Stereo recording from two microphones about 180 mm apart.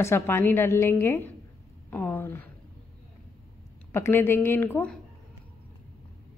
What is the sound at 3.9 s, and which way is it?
A woman's voice, 15° left (ahead or behind).